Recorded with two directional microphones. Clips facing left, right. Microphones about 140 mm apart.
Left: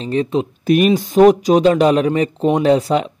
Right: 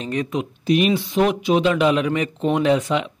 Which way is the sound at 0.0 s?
30° left (ahead or behind).